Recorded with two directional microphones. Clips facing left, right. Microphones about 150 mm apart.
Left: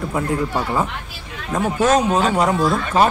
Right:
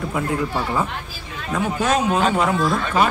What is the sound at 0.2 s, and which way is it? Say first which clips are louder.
Speech: left 2 dB; 40° left (ahead or behind).